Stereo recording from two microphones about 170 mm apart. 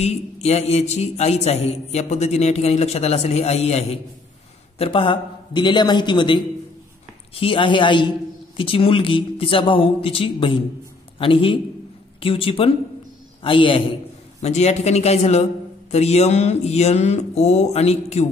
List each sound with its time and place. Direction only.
0.0 s a man's voice: 40° left (ahead or behind)